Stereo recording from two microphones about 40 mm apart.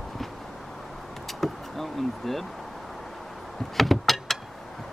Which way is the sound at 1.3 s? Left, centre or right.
Centre.